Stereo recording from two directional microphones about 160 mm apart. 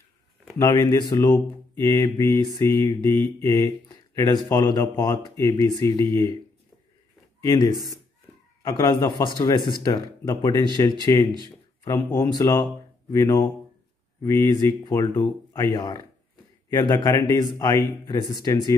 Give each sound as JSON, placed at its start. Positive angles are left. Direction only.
{"t": 0.6, "sound": "speech", "side_deg": 20}
{"t": 2.2, "sound": "mantra", "side_deg": -30}
{"t": 2.8, "sound": "speech", "side_deg": 15}
{"t": 7.5, "sound": "speech", "side_deg": 25}